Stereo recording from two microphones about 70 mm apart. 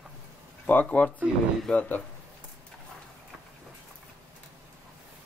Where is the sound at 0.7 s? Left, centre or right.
Left.